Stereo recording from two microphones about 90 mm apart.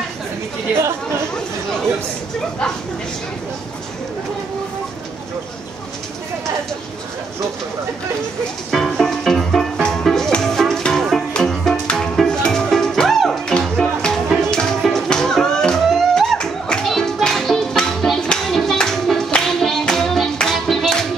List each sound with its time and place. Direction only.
0.7 s speech: 30° right (ahead or behind)
8.6 s music: 5° left (ahead or behind)